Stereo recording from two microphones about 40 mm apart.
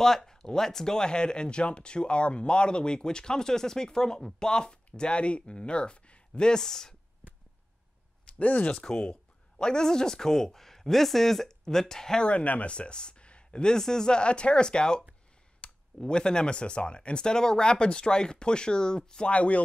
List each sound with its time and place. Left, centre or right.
0.0 s speech: centre
8.3 s speech: left
8.7 s speech: centre
12.3 s speech: left; by 15.0 s centre
15.6 s a sound: left
16.0 s speech: left
19.3 s speech: left